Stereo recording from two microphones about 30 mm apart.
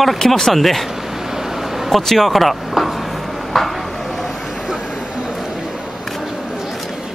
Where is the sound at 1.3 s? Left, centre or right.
Centre.